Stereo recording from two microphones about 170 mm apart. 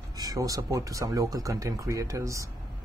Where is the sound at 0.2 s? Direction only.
20° right (ahead or behind).